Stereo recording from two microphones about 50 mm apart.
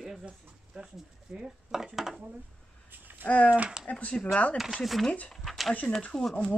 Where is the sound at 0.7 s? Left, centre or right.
Right.